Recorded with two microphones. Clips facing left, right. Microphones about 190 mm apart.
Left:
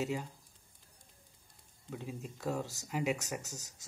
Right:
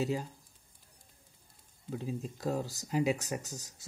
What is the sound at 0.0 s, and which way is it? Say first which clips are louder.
Speech: right 3 dB; 30° right (ahead or behind).